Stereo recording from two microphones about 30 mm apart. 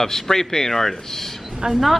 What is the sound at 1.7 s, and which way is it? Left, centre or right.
Speech, centre.